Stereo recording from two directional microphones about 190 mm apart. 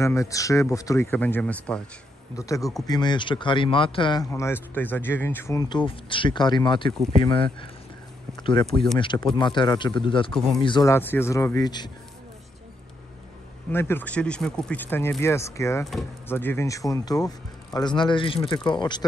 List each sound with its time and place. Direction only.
0.0 s speech: 15° left (ahead or behind)
11.0 s speech: 10° left (ahead or behind)
13.7 s speech: 10° left (ahead or behind)
15.8 s speech: centre (ahead or behind)
16.3 s speech: 10° left (ahead or behind)